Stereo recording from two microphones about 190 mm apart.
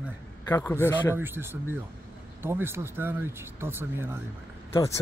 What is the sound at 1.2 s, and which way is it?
Speech, 10° right (ahead or behind).